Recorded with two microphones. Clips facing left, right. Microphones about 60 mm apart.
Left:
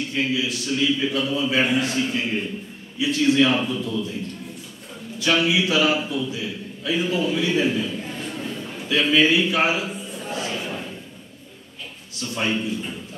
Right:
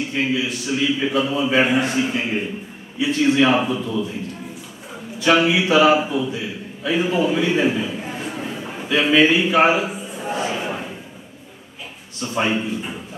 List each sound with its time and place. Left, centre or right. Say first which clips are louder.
0.0 s a man's voice: right 2 dB; centre
5.2 s a sound: right 4 dB; centre
12.2 s a man's voice: right 4 dB; centre